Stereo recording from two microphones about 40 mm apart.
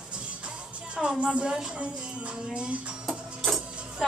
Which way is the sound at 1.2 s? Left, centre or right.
Right.